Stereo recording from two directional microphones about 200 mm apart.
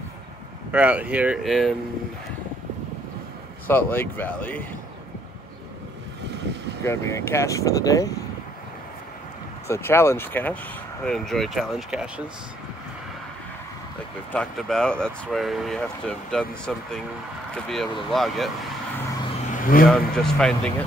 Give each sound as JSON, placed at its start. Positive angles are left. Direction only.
{"t": 0.7, "sound": "speech", "side_deg": -10}
{"t": 3.6, "sound": "speech", "side_deg": 10}
{"t": 6.8, "sound": "speech", "side_deg": 15}
{"t": 9.7, "sound": "speech", "side_deg": 10}
{"t": 14.3, "sound": "speech", "side_deg": 5}
{"t": 19.5, "sound": "vehicle", "side_deg": 45}
{"t": 19.9, "sound": "speech", "side_deg": 0}